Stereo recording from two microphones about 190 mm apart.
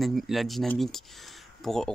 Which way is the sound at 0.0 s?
Centre (ahead or behind).